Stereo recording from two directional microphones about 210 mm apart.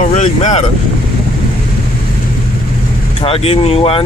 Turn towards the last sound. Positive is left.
turn(degrees=30)  # may be behind; listen again after turning